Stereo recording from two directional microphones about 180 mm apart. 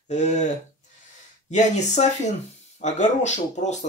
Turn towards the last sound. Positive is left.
turn(degrees=40)  # may be behind; listen again after turning